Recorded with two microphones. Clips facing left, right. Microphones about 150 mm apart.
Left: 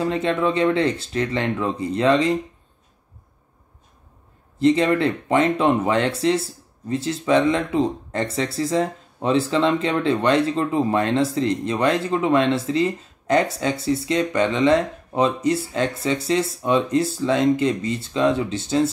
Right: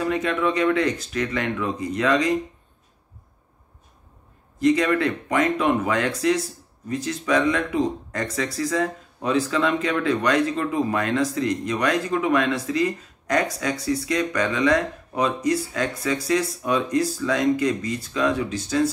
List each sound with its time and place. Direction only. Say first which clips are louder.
0.0 s speech: left 2 dB; 25° left (ahead or behind)
4.6 s speech: left 2 dB; 25° left (ahead or behind)